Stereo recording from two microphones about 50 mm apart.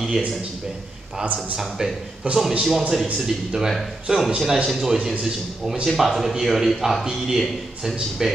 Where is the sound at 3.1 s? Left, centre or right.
Centre.